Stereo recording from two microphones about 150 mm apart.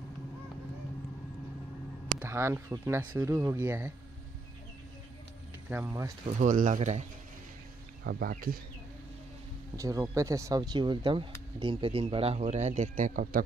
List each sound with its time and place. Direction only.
2.1 s speech: 15° right (ahead or behind)
5.7 s speech: 15° right (ahead or behind)
6.4 s speech: 55° right (ahead or behind)
8.0 s speech: 80° right
9.8 s a man's voice: 20° right (ahead or behind); by 13.4 s 65° right (ahead or behind)